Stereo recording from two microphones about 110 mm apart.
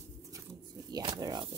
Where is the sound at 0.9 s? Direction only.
40° right (ahead or behind).